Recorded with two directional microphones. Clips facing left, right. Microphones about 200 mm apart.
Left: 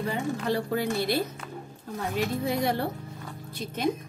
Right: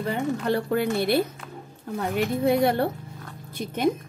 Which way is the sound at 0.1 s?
60° right (ahead or behind).